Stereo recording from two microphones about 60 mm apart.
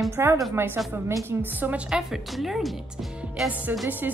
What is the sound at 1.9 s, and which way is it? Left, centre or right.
A woman's voice, centre.